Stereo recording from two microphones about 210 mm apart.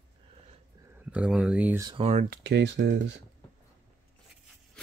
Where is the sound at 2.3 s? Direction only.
55° right (ahead or behind).